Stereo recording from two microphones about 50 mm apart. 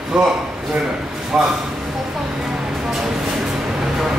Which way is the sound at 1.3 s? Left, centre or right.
Centre.